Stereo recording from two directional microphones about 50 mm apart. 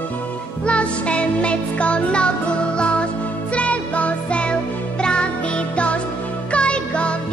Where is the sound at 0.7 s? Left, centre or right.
Left.